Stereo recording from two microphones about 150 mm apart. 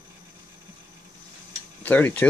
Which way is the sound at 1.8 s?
15° left (ahead or behind).